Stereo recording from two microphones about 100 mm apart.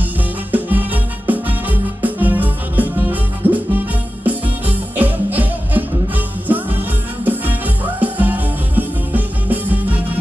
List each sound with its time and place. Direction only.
0.0 s music: 15° right (ahead or behind)